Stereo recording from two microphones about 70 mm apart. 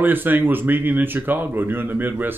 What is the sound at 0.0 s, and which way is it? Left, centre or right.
Speech, right.